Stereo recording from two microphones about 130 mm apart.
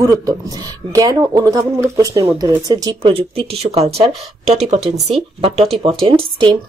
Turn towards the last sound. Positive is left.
turn(degrees=-40)  # may be behind; listen again after turning